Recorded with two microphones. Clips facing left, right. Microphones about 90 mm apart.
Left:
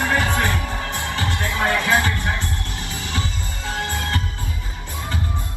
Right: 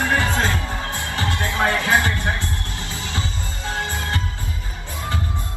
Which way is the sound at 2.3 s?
20° left (ahead or behind).